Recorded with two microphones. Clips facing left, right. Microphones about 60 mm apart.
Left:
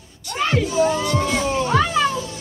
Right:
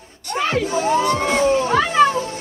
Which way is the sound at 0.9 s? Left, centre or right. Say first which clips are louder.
Right 3 dB; right.